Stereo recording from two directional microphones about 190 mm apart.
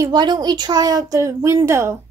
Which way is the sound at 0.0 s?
20° right (ahead or behind).